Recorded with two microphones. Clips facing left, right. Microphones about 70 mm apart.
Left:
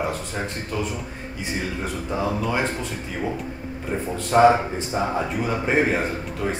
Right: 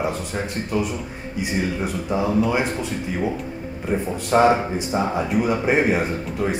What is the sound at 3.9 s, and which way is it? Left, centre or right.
Speech, centre.